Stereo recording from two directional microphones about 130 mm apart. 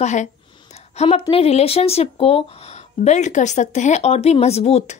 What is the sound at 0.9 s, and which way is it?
Speech, 55° left (ahead or behind).